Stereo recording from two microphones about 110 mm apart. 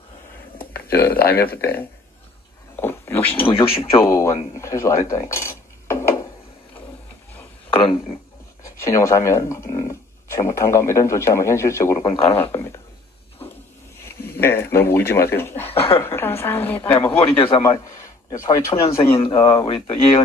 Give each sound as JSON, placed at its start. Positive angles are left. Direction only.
{"t": 0.6, "sound": "speech", "side_deg": 15}
{"t": 2.7, "sound": "cat", "side_deg": 20}
{"t": 3.9, "sound": "speech", "side_deg": 25}
{"t": 7.7, "sound": "speech", "side_deg": 55}
{"t": 8.6, "sound": "speech", "side_deg": 25}
{"t": 12.4, "sound": "speech", "side_deg": 20}
{"t": 13.9, "sound": "speech", "side_deg": 25}
{"t": 16.9, "sound": "a man's voice", "side_deg": 60}
{"t": 17.6, "sound": "a man's voice", "side_deg": 30}
{"t": 19.4, "sound": "speech", "side_deg": 50}